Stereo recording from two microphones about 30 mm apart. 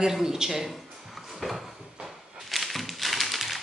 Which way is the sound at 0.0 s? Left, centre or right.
Centre.